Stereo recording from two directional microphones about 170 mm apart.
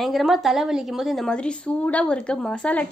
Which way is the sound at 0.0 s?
Centre (ahead or behind).